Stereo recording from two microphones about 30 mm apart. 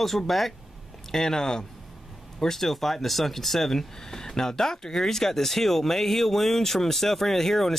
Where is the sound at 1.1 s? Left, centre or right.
Centre.